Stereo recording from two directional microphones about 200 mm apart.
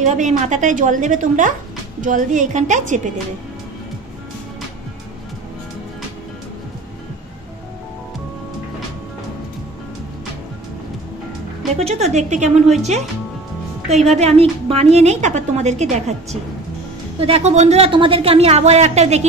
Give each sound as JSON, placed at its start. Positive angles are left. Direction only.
{"t": 0.0, "sound": "a woman's voice", "side_deg": -35}
{"t": 11.7, "sound": "a woman's voice", "side_deg": -30}
{"t": 14.0, "sound": "a woman's voice", "side_deg": -30}